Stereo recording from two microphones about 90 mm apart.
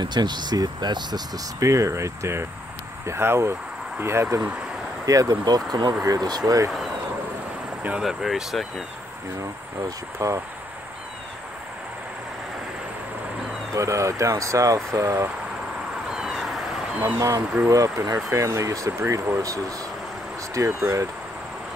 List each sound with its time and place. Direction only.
0.0 s speech: 55° right (ahead or behind); by 4.4 s 30° right (ahead or behind)
4.4 s speech: 10° right (ahead or behind)
5.0 s speech: 40° right (ahead or behind)
6.7 s speech: centre (ahead or behind)
8.0 s speech: 5° right (ahead or behind)
9.4 s speech: 40° right (ahead or behind)
13.7 s speech: 35° right (ahead or behind)
16.2 s vehicle: centre (ahead or behind)
17.6 s speech: 40° right (ahead or behind)
20.5 s speech: 30° right (ahead or behind)